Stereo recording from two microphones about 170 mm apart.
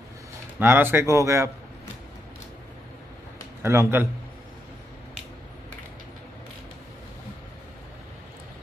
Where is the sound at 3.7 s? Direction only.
15° right (ahead or behind).